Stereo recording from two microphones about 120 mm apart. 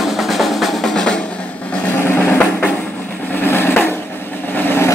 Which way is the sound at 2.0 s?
15° left (ahead or behind).